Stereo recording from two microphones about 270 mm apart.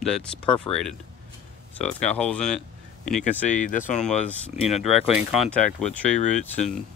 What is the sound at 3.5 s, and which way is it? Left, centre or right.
Speech, left.